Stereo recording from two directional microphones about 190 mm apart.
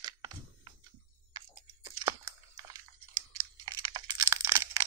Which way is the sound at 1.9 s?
15° right (ahead or behind).